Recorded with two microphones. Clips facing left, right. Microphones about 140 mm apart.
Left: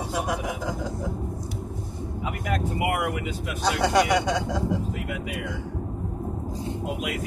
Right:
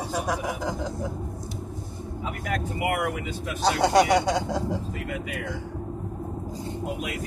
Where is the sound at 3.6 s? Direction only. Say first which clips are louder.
Right 2 dB; 35° right (ahead or behind).